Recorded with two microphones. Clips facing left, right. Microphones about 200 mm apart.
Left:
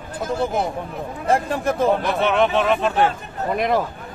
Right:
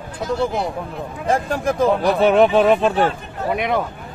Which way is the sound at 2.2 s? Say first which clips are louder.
Right 6 dB; 35° right (ahead or behind).